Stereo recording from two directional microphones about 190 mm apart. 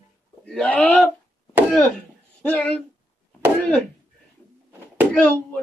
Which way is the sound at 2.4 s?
10° left (ahead or behind).